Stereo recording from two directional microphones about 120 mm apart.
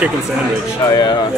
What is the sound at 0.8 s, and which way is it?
Speech, 25° left (ahead or behind).